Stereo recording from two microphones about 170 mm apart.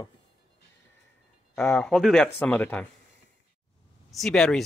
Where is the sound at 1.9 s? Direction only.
Centre (ahead or behind).